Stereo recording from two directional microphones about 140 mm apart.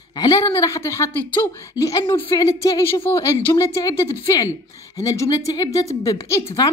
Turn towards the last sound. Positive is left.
turn(degrees=20)  # may be behind; listen again after turning